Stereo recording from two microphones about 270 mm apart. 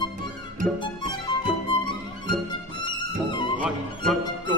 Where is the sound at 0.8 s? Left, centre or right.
Centre.